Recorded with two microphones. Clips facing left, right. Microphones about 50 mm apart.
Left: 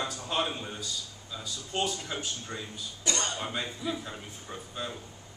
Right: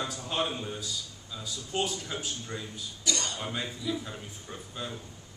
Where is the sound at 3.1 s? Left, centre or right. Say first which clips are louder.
Left 1 dB; left.